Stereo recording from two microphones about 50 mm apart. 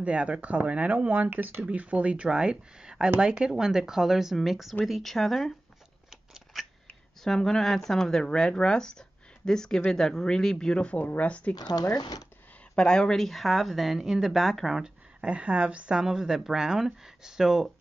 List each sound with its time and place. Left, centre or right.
0.0 s speech: right; by 5.5 s centre
6.3 s scissors: centre
7.2 s a woman's voice: centre
10.9 s speech: left
12.7 s speech: centre
14.8 s speech: right
16.0 s speech: centre